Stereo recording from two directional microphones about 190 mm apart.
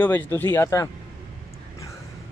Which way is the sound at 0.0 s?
10° left (ahead or behind).